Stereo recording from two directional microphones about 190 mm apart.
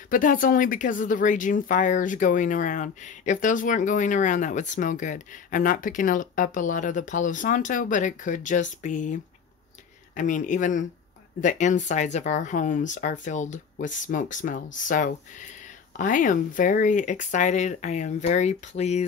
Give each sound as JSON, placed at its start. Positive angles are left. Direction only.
{"t": 0.1, "sound": "speech", "side_deg": 45}